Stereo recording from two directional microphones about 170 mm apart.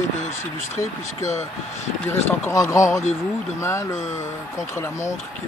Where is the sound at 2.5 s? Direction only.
20° left (ahead or behind).